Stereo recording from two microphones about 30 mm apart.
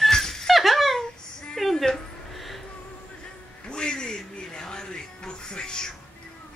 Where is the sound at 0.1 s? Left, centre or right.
Centre.